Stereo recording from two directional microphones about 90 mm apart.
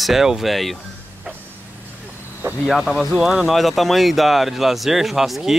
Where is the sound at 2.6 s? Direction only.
Centre (ahead or behind).